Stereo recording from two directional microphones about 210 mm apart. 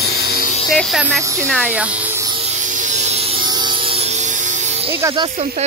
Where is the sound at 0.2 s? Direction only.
45° left (ahead or behind).